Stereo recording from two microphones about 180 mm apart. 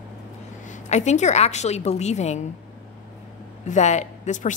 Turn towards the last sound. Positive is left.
turn(degrees=45)  # may be behind; listen again after turning